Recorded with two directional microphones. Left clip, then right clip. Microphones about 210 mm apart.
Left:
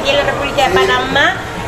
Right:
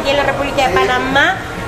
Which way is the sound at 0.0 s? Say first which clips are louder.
Left 1 dB; 10° right (ahead or behind).